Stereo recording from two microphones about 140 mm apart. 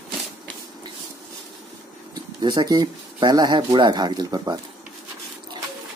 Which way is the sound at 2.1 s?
30° right (ahead or behind).